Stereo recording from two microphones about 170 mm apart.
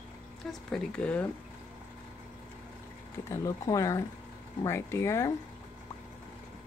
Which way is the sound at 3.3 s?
20° left (ahead or behind).